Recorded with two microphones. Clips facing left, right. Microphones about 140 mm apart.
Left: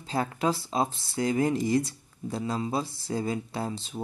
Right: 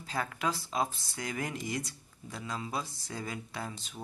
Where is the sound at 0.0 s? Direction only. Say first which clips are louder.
Left 6 dB; 30° left (ahead or behind).